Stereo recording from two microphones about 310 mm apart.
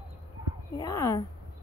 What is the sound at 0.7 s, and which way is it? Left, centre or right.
Speech, centre.